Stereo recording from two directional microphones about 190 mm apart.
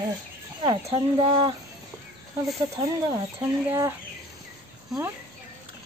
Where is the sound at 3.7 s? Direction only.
15° right (ahead or behind).